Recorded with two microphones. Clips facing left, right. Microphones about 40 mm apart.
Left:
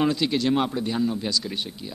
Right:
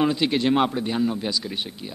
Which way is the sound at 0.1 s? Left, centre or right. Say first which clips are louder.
Right 2 dB; right.